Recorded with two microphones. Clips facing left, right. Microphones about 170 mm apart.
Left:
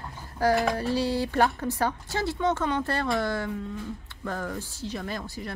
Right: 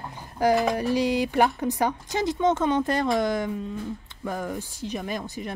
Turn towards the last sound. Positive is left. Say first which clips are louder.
# right 3 dB
turn(degrees=-20)  # may be behind; listen again after turning